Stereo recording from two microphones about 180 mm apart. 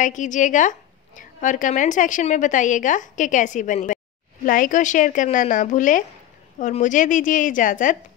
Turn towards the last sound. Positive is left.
turn(degrees=45)  # may be behind; listen again after turning